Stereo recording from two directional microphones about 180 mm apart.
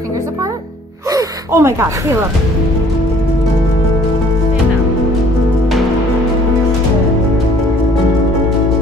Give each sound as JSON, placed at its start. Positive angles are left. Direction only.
{"t": 1.1, "sound": "gasp", "side_deg": -15}